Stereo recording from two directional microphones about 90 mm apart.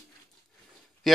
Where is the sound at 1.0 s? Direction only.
Centre (ahead or behind).